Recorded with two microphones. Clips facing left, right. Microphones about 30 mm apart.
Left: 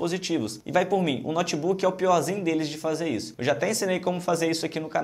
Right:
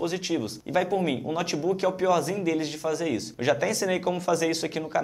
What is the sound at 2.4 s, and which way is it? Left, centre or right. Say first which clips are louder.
Speech: left 1 dB; left.